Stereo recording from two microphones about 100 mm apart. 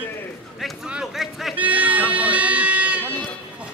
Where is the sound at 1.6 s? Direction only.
15° right (ahead or behind).